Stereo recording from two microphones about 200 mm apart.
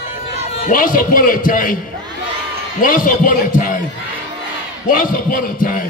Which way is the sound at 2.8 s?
45° left (ahead or behind).